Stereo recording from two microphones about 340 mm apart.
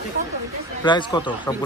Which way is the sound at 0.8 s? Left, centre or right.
Centre.